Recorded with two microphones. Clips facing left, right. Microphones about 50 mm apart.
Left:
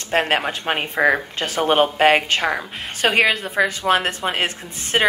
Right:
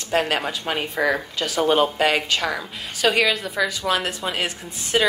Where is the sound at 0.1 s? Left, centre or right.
Left.